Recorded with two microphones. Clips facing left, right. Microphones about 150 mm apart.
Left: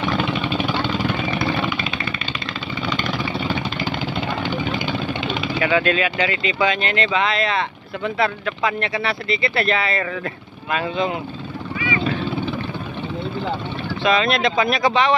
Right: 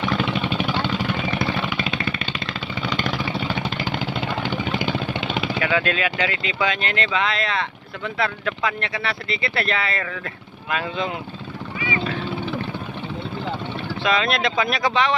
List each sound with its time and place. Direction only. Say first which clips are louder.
1.8 s a sound: right 1 dB; 80° right
5.6 s speech: left 5 dB; centre (ahead or behind)
14.0 s speech: left 3 dB; centre (ahead or behind)